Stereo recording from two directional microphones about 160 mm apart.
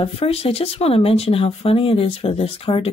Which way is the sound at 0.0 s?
40° left (ahead or behind).